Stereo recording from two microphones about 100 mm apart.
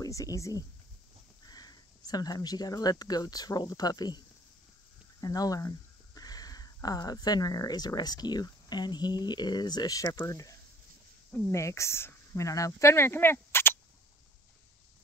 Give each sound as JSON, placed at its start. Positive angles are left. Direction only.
{"t": 0.0, "sound": "speech", "side_deg": 35}
{"t": 5.2, "sound": "speech", "side_deg": 40}
{"t": 11.5, "sound": "speech", "side_deg": 30}